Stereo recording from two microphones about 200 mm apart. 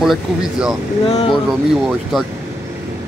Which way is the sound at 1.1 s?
20° left (ahead or behind).